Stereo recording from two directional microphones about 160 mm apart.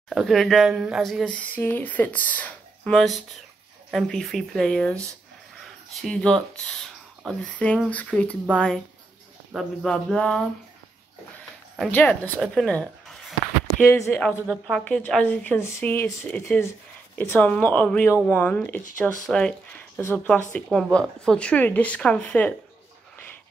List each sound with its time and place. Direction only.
0.1 s speech: centre (ahead or behind)
5.9 s a woman's voice: 5° left (ahead or behind)
11.9 s a woman's voice: 10° left (ahead or behind)
13.7 s speech: 15° left (ahead or behind)
14.3 s a woman's voice: 10° right (ahead or behind)
14.7 s a woman's voice: 5° left (ahead or behind)